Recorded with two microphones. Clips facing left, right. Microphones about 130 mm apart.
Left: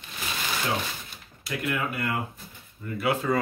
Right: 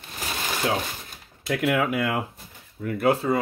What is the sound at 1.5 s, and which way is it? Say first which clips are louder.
Speech: right 7 dB; 90° right.